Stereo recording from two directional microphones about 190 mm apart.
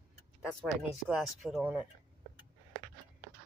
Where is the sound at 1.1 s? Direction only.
5° right (ahead or behind).